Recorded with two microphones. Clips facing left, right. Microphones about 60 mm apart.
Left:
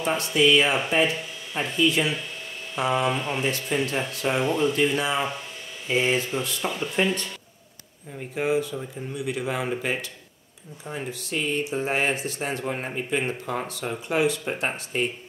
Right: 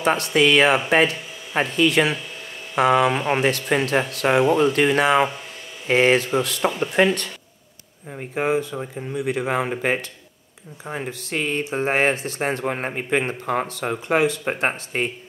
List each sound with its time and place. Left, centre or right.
0.0 s speech: right
8.1 s speech: right